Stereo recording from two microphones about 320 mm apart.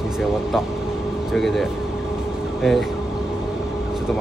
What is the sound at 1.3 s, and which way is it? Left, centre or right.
Speech, centre.